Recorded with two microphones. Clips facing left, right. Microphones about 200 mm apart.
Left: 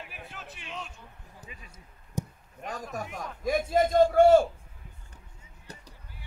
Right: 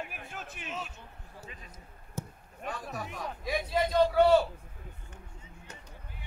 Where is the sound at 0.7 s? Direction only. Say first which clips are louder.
Right 1 dB; 5° right (ahead or behind).